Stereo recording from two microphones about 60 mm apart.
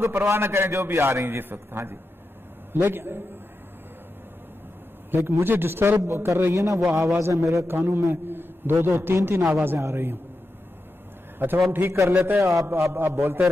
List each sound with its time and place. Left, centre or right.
0.0 s a man's voice: right
5.1 s a man's voice: right
7.6 s a man's voice: right
8.1 s a sound: right
8.8 s a man's voice: right
11.3 s a man's voice: right
13.2 s a man's voice: right